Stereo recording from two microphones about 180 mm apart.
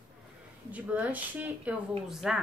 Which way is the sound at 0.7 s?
10° right (ahead or behind).